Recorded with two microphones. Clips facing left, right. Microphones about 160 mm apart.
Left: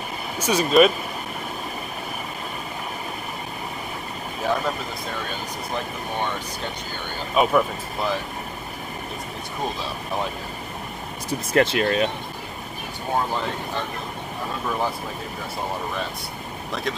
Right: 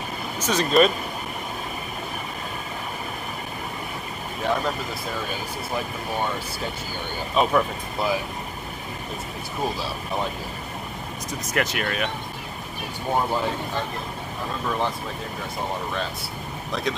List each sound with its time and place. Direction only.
0.4 s speech: 10° left (ahead or behind)
4.4 s speech: centre (ahead or behind)
7.3 s speech: centre (ahead or behind)
11.2 s speech: 30° left (ahead or behind)